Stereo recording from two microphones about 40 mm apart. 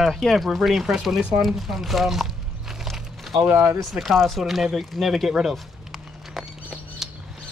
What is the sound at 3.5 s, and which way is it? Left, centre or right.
Speech, right.